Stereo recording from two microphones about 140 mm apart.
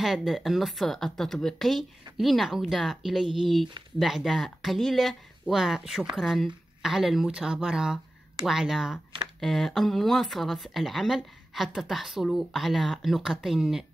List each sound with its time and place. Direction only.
0.0 s speech: centre (ahead or behind)